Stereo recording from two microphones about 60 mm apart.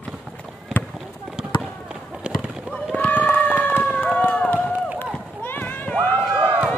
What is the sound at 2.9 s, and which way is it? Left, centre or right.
Run, left.